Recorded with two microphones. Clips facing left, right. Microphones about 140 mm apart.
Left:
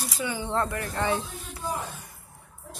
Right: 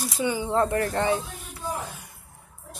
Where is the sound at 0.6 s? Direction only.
40° right (ahead or behind).